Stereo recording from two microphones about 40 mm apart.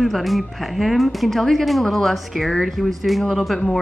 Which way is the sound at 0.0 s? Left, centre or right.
Centre.